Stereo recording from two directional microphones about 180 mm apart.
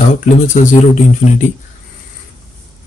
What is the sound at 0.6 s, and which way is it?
Speech, 45° left (ahead or behind).